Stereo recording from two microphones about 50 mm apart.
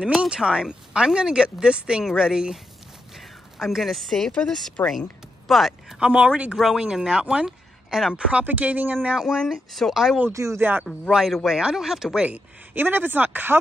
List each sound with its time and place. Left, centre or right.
0.2 s speech: centre
3.2 s speech: centre
4.8 s speech: left
5.5 s speech: centre; by 6.5 s right
6.5 s speech: centre
7.4 s a sound: centre
8.3 s speech: right
9.1 s speech: centre
9.5 s speech: centre
10.3 s speech: right
11.2 s speech: centre
12.7 s speech: right